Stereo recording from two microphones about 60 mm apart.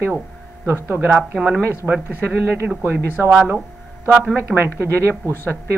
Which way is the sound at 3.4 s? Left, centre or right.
Right.